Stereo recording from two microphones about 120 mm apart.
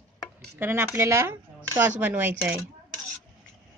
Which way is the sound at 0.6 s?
20° right (ahead or behind).